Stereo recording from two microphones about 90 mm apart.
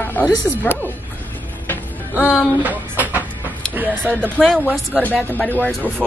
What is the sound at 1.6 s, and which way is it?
Music, 25° left (ahead or behind).